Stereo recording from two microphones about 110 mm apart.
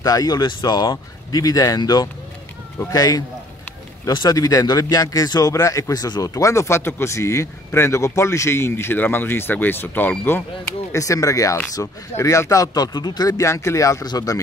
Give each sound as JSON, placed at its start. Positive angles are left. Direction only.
{"t": 0.0, "sound": "speech", "side_deg": 35}
{"t": 10.9, "sound": "speech", "side_deg": 30}